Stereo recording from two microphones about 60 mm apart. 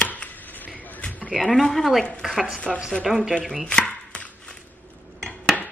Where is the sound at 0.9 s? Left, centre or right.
Left.